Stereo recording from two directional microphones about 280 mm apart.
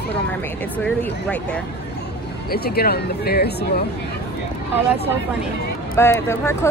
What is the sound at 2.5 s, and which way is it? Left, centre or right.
Speech, left.